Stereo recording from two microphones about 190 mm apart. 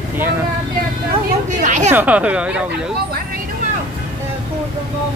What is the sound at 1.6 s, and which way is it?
Speech, 40° right (ahead or behind).